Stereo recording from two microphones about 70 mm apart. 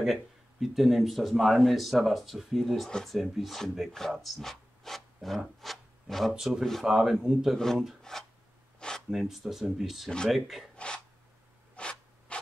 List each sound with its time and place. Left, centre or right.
0.0 s speech: centre
6.3 s speech: centre
6.6 s speech: centre
7.5 s speech: centre
8.7 s a sound: centre
9.1 s speech: centre
10.0 s speech: centre
10.8 s a sound: centre